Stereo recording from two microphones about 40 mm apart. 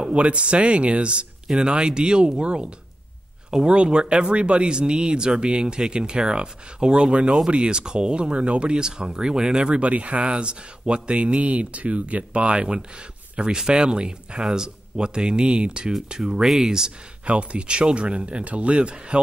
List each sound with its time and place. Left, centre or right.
0.1 s speech: right; by 16.9 s centre
17.2 s speech: right